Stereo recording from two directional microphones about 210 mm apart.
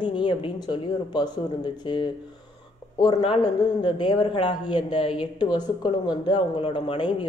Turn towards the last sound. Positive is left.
turn(degrees=25)  # may be behind; listen again after turning